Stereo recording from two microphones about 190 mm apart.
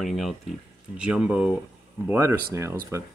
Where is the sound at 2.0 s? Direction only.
15° right (ahead or behind).